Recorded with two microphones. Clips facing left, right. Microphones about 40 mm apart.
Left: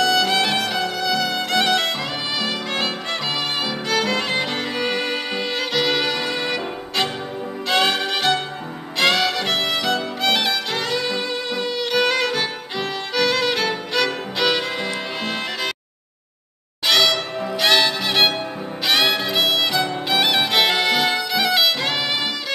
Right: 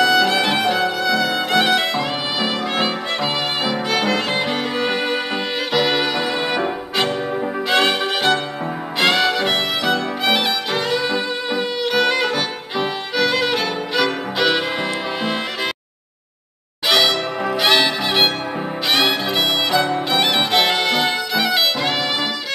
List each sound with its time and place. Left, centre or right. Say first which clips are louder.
0.0 s music: right 3 dB; centre
3.6 s violin: right 3 dB; centre
7.7 s violin: right 1 dB; centre
9.0 s music: right 2 dB; centre
16.9 s music: right 1 dB; centre
18.9 s violin: even; centre